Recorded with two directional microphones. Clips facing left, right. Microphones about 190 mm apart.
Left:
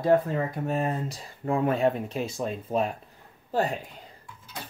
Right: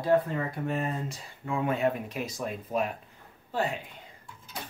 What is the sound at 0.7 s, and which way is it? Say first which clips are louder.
Speech: left 3 dB; 35° left (ahead or behind).